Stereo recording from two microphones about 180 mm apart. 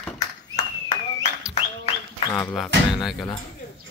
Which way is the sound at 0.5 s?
35° left (ahead or behind).